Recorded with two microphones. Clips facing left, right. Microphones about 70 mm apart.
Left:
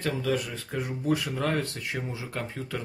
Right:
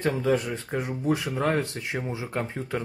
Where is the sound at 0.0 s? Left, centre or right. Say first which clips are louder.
Right 4 dB; right.